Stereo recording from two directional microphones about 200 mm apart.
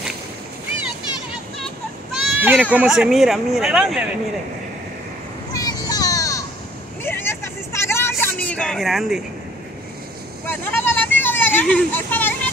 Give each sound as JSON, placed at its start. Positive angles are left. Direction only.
{"t": 2.2, "sound": "speech", "side_deg": -5}
{"t": 5.5, "sound": "music", "side_deg": 20}
{"t": 7.0, "sound": "vehicle", "side_deg": 10}
{"t": 10.4, "sound": "a sound", "side_deg": 10}